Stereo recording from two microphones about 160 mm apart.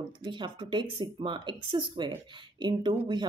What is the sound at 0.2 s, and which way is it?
Speech, 30° right (ahead or behind).